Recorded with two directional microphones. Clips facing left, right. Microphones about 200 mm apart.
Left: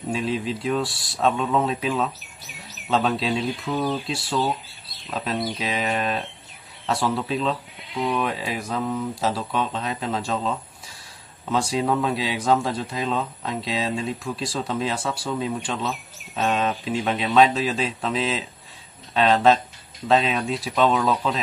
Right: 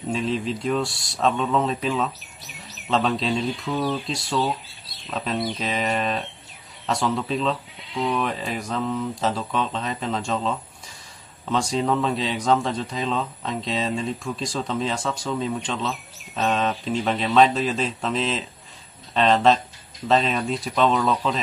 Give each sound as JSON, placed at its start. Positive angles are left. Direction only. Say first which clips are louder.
{"t": 0.1, "sound": "speech", "louder": "even", "side_deg": 5}